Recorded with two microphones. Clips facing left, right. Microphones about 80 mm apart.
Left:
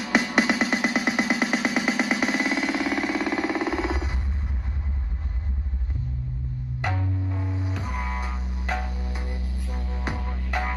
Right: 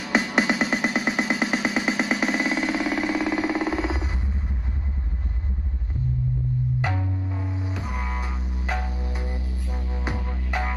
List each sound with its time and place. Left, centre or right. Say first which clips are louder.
0.0 s music: even; centre
6.8 s music: right 1 dB; centre